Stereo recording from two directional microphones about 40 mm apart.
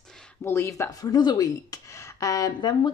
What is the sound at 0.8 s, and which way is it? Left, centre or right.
Speech, left.